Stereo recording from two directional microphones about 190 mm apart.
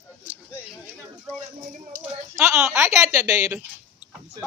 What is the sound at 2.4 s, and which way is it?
Speech, 10° right (ahead or behind).